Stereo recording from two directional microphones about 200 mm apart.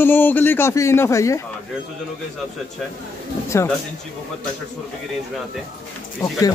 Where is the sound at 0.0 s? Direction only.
10° left (ahead or behind).